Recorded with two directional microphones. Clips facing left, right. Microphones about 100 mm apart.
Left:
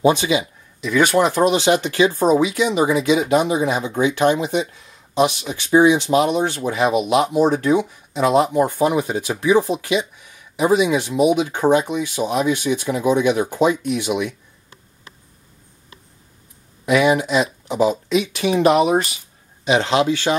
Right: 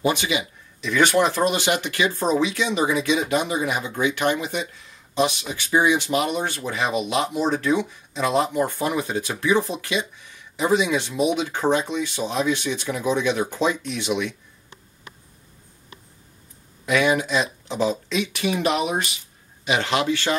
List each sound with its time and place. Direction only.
0.0 s speech: 25° left (ahead or behind)
0.8 s speech: 5° left (ahead or behind)
1.5 s speech: 30° left (ahead or behind)
2.2 s speech: 10° left (ahead or behind)
16.8 s speech: 15° left (ahead or behind)
18.4 s speech: 35° left (ahead or behind)
19.6 s speech: 25° left (ahead or behind)